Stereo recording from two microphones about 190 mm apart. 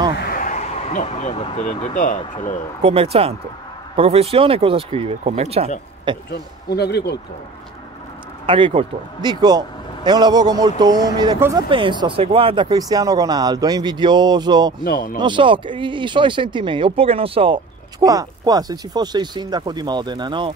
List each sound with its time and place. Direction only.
0.2 s a sound: 45° left (ahead or behind); by 1.5 s 30° left (ahead or behind)
1.6 s speech: 40° left (ahead or behind)
2.8 s speech: 30° right (ahead or behind)
6.3 s speech: 60° left (ahead or behind)
8.5 s speech: 25° right (ahead or behind)
14.9 s speech: 50° left (ahead or behind)
15.1 s speech: 25° right (ahead or behind)
18.0 s speech: 20° right (ahead or behind)